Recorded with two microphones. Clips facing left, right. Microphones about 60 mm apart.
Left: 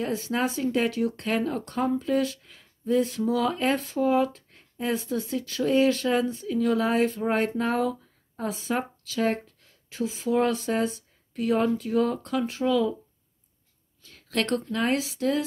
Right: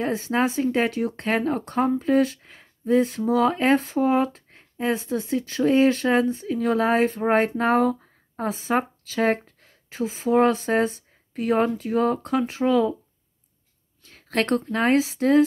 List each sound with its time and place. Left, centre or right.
0.0 s speech: right
14.1 s a woman's voice: right